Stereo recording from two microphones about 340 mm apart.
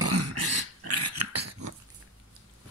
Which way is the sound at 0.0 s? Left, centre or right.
Right.